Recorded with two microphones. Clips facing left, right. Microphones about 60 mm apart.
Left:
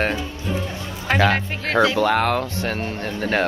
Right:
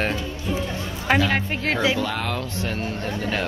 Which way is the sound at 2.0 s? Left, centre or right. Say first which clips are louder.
Left 7 dB; left.